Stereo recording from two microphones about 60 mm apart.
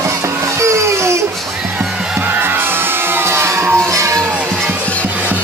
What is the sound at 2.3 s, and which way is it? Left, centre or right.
Music, right.